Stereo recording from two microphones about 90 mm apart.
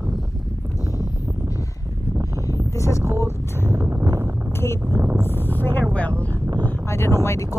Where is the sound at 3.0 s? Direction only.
30° right (ahead or behind).